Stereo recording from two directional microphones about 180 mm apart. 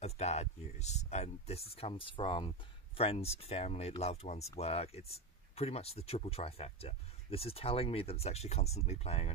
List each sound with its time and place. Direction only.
0.0 s speech: 35° left (ahead or behind)